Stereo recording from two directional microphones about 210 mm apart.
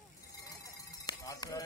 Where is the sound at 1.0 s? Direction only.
20° left (ahead or behind).